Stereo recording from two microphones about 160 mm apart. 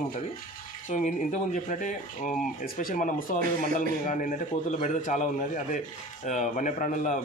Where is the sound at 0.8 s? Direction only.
50° left (ahead or behind).